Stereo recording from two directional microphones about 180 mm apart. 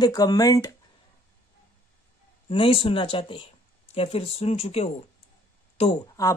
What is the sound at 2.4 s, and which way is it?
Speech, 30° left (ahead or behind).